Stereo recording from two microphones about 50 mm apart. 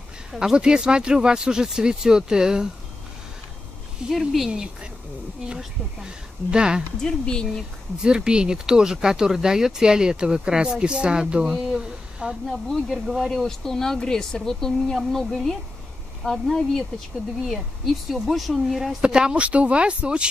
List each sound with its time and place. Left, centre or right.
0.3 s speech: centre
4.1 s speech: centre
5.6 s speech: centre
7.0 s speech: centre
8.0 s speech: centre
12.6 s speech: centre
13.3 s speech: centre
18.1 s speech: centre
18.9 s speech: centre